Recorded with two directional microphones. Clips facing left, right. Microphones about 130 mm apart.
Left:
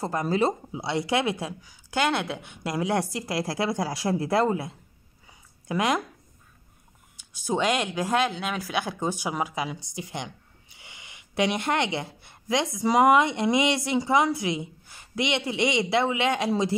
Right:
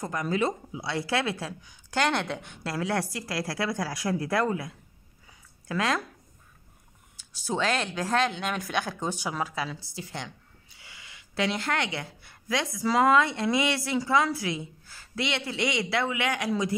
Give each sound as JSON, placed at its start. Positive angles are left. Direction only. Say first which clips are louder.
{"t": 0.0, "sound": "speech", "louder": "left 3 dB", "side_deg": 30}
{"t": 7.2, "sound": "speech", "louder": "left 3 dB", "side_deg": 15}